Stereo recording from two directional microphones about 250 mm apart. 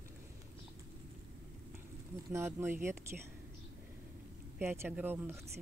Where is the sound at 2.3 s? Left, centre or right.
Centre.